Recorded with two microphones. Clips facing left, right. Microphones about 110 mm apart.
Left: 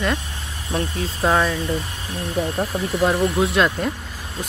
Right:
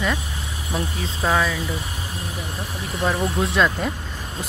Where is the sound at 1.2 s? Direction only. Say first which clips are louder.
Left 2 dB; 10° left (ahead or behind).